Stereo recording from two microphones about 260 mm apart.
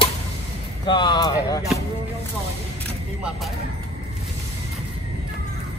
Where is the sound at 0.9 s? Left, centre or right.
Centre.